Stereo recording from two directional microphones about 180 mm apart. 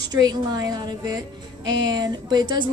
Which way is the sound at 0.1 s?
20° right (ahead or behind).